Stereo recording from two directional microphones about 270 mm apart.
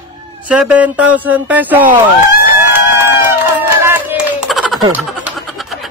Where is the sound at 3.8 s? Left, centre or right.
Centre.